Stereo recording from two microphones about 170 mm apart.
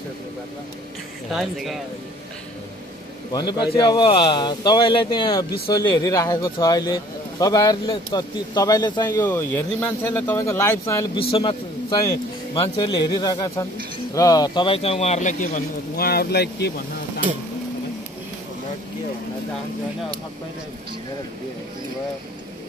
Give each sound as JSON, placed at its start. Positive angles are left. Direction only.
{"t": 1.3, "sound": "speech", "side_deg": 0}
{"t": 3.3, "sound": "speech", "side_deg": 25}
{"t": 11.1, "sound": "speech", "side_deg": 30}
{"t": 12.5, "sound": "speech", "side_deg": 30}
{"t": 16.0, "sound": "speech", "side_deg": 70}